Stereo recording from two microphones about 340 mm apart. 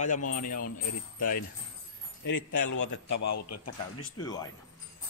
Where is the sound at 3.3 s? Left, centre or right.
Left.